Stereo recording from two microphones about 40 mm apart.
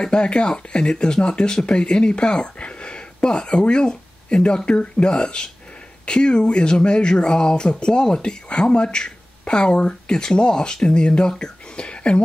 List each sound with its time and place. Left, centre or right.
0.0 s speech: left